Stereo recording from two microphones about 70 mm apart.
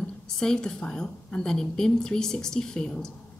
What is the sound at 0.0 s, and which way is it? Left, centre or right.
A woman's voice, centre.